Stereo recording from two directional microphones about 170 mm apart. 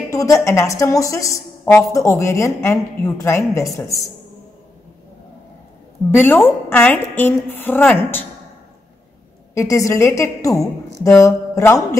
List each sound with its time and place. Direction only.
0.1 s a woman's voice: 20° left (ahead or behind)
6.2 s a woman's voice: 10° left (ahead or behind)
9.5 s a woman's voice: 20° left (ahead or behind)